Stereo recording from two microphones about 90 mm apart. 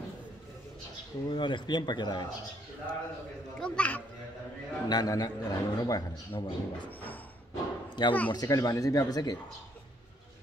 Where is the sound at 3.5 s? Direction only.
10° left (ahead or behind).